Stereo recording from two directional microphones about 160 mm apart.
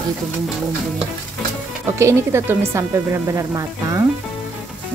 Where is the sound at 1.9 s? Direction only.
15° right (ahead or behind).